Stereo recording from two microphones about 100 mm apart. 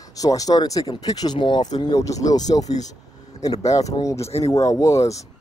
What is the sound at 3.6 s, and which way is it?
Speech, 35° left (ahead or behind).